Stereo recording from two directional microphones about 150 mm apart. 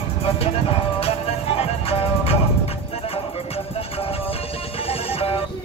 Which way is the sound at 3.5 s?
40° left (ahead or behind).